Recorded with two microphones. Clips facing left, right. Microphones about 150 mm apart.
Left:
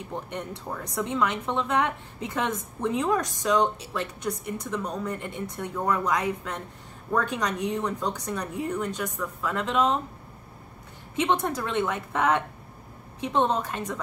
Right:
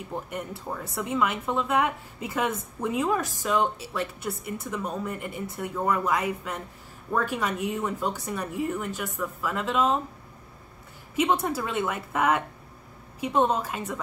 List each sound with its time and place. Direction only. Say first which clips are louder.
0.1 s speech: right 1 dB; 5° right (ahead or behind)
11.1 s a woman's voice: right 1 dB; 5° right (ahead or behind)